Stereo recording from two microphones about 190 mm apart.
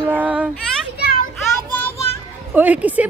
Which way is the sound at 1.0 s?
50° left (ahead or behind).